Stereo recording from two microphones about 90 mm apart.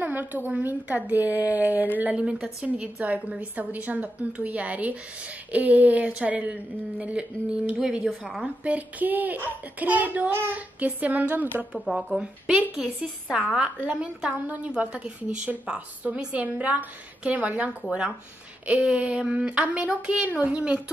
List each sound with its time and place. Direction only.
0.0 s a woman's voice: 20° right (ahead or behind); by 8.5 s centre (ahead or behind)
8.6 s a child's voice: 20° right (ahead or behind)
11.7 s speech: 5° right (ahead or behind)
12.2 s a woman's voice: 15° right (ahead or behind)